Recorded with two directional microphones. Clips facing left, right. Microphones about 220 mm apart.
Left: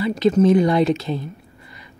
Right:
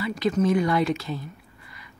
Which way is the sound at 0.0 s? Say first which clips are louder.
Left 7 dB; 25° left (ahead or behind).